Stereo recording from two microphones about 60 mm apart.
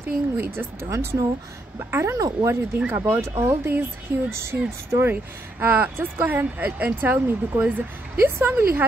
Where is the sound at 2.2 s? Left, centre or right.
Right.